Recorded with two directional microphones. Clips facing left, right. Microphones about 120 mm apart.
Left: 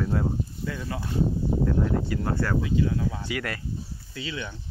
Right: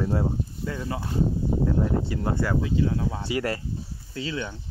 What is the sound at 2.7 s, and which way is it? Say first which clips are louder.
Speech: even; 30° right (ahead or behind).